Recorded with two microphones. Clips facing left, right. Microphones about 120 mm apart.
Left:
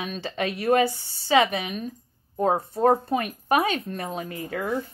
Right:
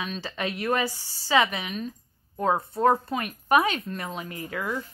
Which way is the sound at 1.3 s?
60° left (ahead or behind).